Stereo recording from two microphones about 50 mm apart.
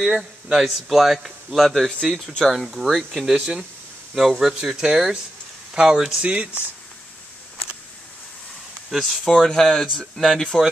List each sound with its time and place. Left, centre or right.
0.2 s speech: centre
6.2 s speech: right
8.9 s speech: centre